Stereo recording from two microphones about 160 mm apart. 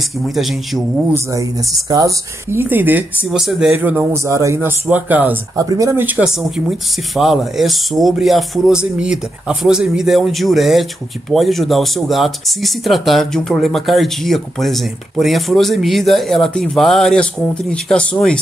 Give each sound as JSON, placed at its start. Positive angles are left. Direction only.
{"t": 0.3, "sound": "speech", "side_deg": 0}
{"t": 1.1, "sound": "speech", "side_deg": -20}
{"t": 5.6, "sound": "speech", "side_deg": -20}